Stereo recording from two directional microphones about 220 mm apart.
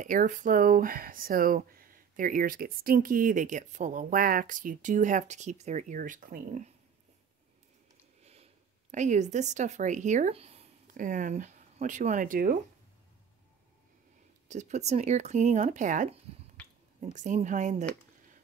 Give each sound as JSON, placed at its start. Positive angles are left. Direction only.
{"t": 0.0, "sound": "speech", "side_deg": -35}
{"t": 8.2, "sound": "a sound", "side_deg": -30}
{"t": 8.9, "sound": "speech", "side_deg": -35}
{"t": 14.5, "sound": "speech", "side_deg": -30}
{"t": 16.6, "sound": "finger snapping", "side_deg": 5}
{"t": 17.0, "sound": "speech", "side_deg": -35}